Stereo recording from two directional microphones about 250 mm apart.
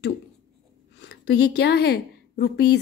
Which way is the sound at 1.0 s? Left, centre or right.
Left.